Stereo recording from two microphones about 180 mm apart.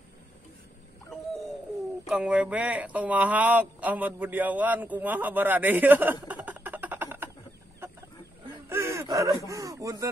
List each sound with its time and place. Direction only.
2.0 s speech: 5° right (ahead or behind)
6.2 s a sound: 10° right (ahead or behind)
8.6 s gasp: 15° right (ahead or behind)
9.5 s speech: 20° right (ahead or behind)